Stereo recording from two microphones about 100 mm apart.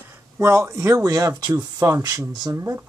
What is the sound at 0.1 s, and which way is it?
Speech, 25° right (ahead or behind).